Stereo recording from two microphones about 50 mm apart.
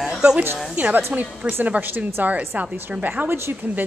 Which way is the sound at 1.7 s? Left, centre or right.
Right.